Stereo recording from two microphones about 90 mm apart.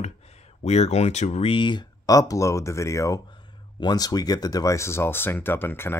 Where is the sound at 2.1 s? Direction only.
40° left (ahead or behind).